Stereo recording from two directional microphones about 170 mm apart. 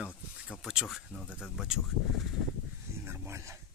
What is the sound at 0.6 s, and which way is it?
Speech, 5° right (ahead or behind).